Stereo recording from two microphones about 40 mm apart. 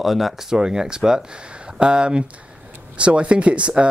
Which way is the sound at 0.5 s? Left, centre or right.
Centre.